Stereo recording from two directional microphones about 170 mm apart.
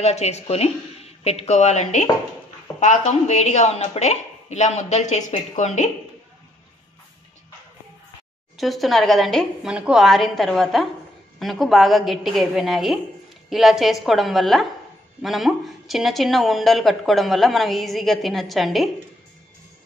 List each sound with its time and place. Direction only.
0.0 s a woman's voice: 40° left (ahead or behind)
8.5 s speech: centre (ahead or behind)